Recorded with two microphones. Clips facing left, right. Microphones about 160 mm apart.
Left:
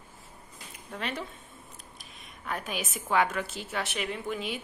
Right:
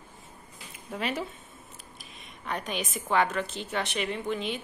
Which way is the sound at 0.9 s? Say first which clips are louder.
Right 4 dB; 5° right (ahead or behind).